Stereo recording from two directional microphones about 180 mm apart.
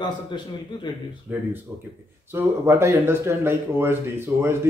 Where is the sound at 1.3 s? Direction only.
10° right (ahead or behind).